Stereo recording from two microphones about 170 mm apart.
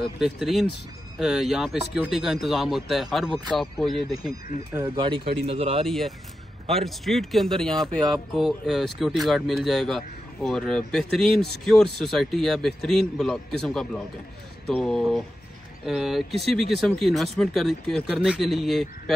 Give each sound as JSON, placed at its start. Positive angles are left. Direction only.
{"t": 0.2, "sound": "speech", "side_deg": 0}
{"t": 4.9, "sound": "speech", "side_deg": -30}
{"t": 5.9, "sound": "speech", "side_deg": 0}